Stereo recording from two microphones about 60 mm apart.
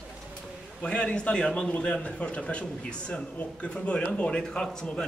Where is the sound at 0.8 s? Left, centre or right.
Centre.